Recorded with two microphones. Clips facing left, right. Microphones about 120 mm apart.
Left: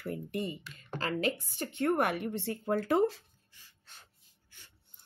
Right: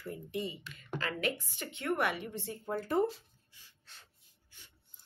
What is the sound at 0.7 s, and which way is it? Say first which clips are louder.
Speech: left 3 dB; 35° left (ahead or behind).